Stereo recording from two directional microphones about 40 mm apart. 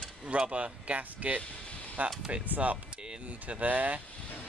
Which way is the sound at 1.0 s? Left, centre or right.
Right.